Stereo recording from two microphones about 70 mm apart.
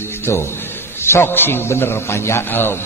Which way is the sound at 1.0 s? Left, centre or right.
Left.